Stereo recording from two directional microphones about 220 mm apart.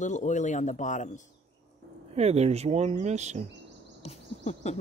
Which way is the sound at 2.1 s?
30° right (ahead or behind).